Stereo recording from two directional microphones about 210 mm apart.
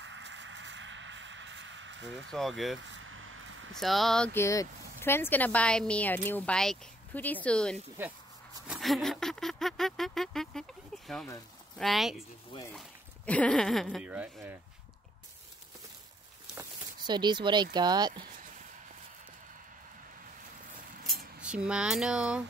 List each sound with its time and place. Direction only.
0.0 s a sound: 65° right (ahead or behind)
2.3 s speech: centre (ahead or behind)
2.9 s vehicle: 70° right (ahead or behind)
3.7 s speech: centre (ahead or behind)
8.6 s rodents: centre (ahead or behind)
11.8 s speech: centre (ahead or behind)
16.5 s speech: 20° right (ahead or behind)
21.1 s cutlery: centre (ahead or behind)